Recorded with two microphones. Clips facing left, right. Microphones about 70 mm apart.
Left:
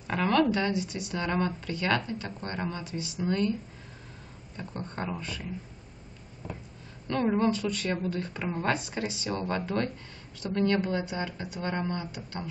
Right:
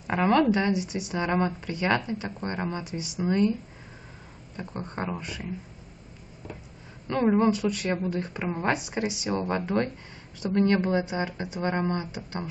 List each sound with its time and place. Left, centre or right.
0.0 s speech: centre
4.6 s speech: centre
7.1 s speech: centre